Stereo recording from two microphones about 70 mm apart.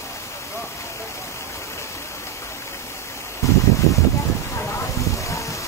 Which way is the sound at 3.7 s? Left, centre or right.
Left.